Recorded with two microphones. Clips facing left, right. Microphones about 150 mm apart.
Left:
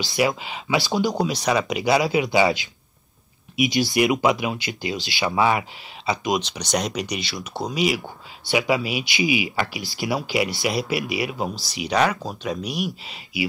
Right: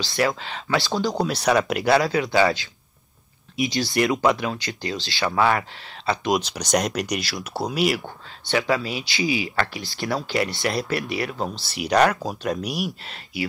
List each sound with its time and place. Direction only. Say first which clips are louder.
0.0 s speech: left 1 dB; 20° left (ahead or behind)
1.1 s speech: right 1 dB; centre (ahead or behind)
2.0 s speech: left 1 dB; 20° left (ahead or behind)
6.2 s speech: right 1 dB; centre (ahead or behind)
8.5 s speech: left 1 dB; 15° left (ahead or behind)